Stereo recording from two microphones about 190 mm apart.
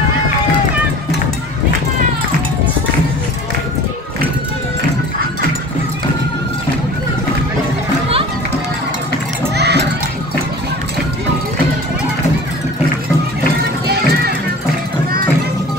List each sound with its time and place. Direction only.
9.6 s children playing: 60° right (ahead or behind)
13.8 s music: 55° right (ahead or behind)